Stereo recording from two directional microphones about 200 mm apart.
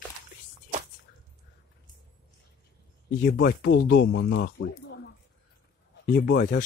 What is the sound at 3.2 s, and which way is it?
Speech, 50° left (ahead or behind).